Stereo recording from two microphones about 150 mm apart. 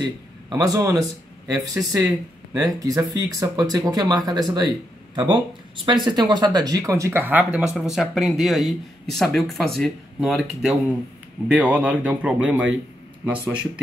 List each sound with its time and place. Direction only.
0.5 s speech: 25° right (ahead or behind); by 10.4 s centre (ahead or behind)
11.4 s speech: 10° right (ahead or behind)